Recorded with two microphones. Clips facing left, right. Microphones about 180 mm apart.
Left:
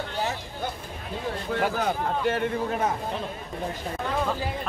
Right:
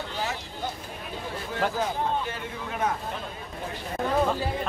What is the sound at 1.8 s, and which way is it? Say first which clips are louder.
Speech: left 1 dB; 60° left (ahead or behind).